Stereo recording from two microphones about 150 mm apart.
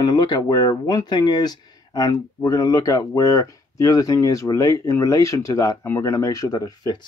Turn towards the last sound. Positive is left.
turn(degrees=25)  # may be behind; listen again after turning